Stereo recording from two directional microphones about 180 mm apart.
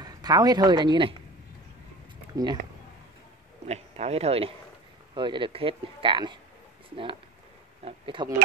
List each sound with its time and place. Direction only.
0.0 s speech: 20° right (ahead or behind)
2.3 s speech: 20° right (ahead or behind)
3.6 s speech: 35° right (ahead or behind)
7.8 s speech: 30° right (ahead or behind)